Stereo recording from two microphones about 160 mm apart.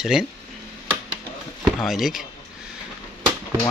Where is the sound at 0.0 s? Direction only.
5° right (ahead or behind).